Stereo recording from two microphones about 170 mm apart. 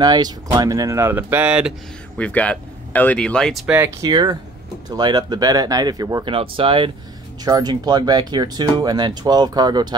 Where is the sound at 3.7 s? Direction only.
20° right (ahead or behind).